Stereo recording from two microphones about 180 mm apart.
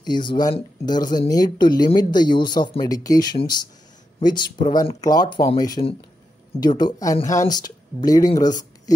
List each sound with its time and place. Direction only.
0.0 s speech: 25° left (ahead or behind)